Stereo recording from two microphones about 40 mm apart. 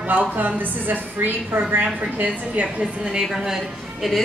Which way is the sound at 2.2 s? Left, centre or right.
Right.